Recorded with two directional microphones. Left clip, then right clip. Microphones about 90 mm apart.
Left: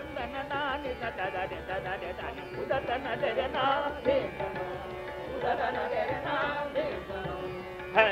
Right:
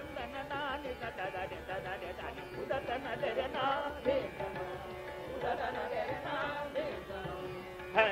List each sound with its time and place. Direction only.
0.5 s music: 35° right (ahead or behind)
8.0 s music: 35° right (ahead or behind)